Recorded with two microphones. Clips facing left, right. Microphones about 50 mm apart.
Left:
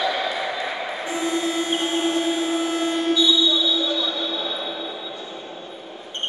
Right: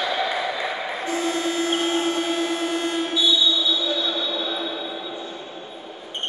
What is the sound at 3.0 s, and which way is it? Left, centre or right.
Music, centre.